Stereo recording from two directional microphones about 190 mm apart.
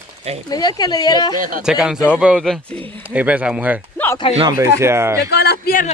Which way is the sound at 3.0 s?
10° right (ahead or behind).